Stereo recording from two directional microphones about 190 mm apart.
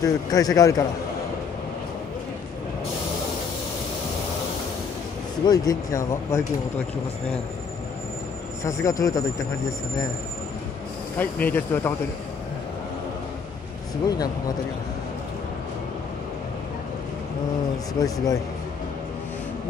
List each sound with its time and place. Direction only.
0.0 s speech: 20° left (ahead or behind)
5.4 s speech: 20° left (ahead or behind)
8.8 s speech: 20° left (ahead or behind)
11.1 s speech: 10° left (ahead or behind)
14.0 s speech: 20° left (ahead or behind)
18.0 s speech: 20° left (ahead or behind)